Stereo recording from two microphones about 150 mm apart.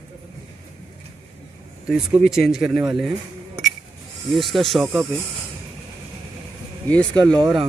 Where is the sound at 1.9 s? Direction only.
5° right (ahead or behind).